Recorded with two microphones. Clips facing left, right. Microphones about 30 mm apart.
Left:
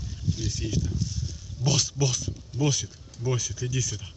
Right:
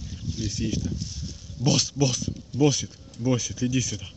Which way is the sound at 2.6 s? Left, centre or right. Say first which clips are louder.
Right 5 dB; right.